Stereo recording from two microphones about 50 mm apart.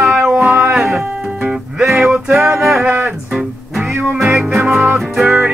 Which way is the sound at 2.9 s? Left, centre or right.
Right.